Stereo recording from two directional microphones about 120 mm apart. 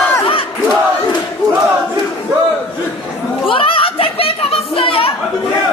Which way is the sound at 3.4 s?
50° left (ahead or behind).